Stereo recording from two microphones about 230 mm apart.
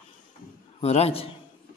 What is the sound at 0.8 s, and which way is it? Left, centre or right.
Speech, left.